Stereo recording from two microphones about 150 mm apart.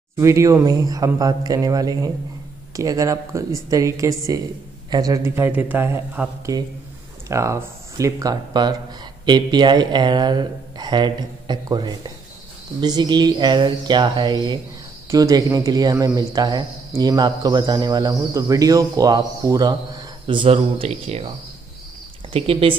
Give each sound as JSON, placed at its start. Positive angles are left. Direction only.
{"t": 0.2, "sound": "speech", "side_deg": -20}
{"t": 22.3, "sound": "speech", "side_deg": -40}